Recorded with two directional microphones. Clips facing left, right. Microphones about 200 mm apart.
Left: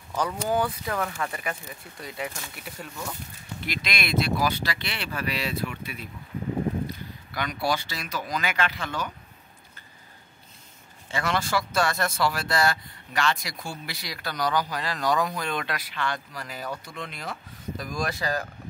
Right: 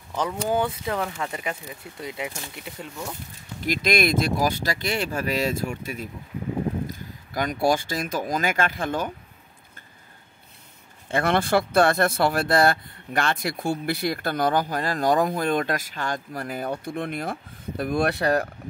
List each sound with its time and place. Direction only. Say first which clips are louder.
0.5 s speech: right 2 dB; 20° right (ahead or behind)
3.6 s speech: right 10 dB; 45° right (ahead or behind)
11.1 s speech: right 6 dB; 55° right (ahead or behind)